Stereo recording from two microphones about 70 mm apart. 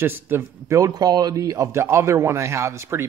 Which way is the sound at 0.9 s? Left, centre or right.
Right.